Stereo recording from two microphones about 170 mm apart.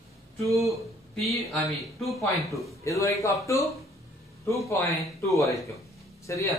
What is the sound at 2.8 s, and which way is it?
Speech, 20° left (ahead or behind).